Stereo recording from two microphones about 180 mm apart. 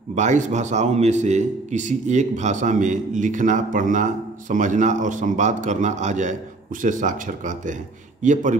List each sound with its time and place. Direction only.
0.1 s a man's voice: 40° right (ahead or behind)